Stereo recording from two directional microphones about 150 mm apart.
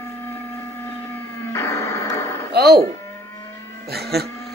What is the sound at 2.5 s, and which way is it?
Speech, 90° right.